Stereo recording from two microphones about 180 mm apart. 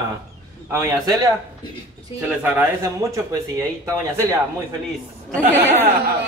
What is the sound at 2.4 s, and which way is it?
Speech, 10° right (ahead or behind).